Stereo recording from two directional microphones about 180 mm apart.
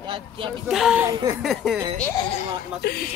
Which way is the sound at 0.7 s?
5° right (ahead or behind).